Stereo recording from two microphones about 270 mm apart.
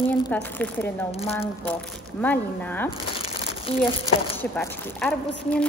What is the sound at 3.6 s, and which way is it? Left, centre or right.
Speech, centre.